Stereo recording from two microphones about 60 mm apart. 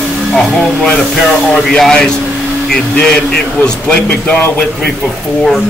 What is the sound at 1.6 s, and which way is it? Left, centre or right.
Speech, centre.